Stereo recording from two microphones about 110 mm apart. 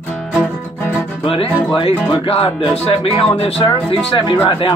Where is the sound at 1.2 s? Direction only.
55° left (ahead or behind).